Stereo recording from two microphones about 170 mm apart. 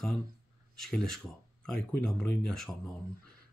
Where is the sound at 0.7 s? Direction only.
Centre (ahead or behind).